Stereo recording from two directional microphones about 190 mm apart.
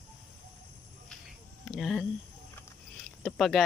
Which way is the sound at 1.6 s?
Centre (ahead or behind).